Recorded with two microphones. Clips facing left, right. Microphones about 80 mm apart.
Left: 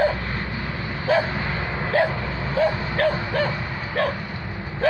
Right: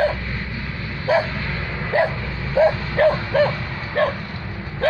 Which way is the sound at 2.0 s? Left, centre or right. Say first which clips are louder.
Left 1 dB; left.